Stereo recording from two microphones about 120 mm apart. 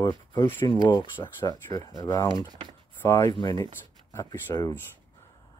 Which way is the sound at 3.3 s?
40° left (ahead or behind).